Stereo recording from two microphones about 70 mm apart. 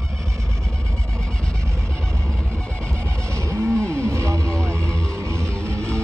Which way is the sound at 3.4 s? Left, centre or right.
Right.